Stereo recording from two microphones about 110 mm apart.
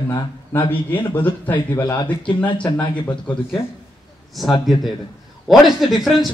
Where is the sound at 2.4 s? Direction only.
45° left (ahead or behind).